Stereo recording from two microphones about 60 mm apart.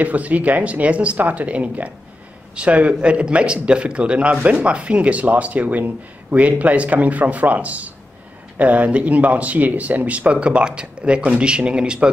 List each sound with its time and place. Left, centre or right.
0.0 s speech: right